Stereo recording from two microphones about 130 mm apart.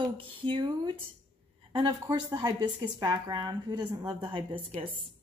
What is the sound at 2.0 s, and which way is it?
A woman's voice, 30° right (ahead or behind).